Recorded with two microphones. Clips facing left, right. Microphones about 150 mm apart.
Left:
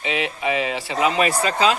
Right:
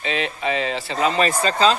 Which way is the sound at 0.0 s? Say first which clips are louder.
Even; 15° left (ahead or behind).